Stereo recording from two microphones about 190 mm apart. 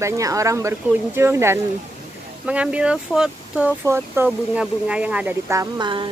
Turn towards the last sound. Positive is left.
turn(degrees=-25)  # may be behind; listen again after turning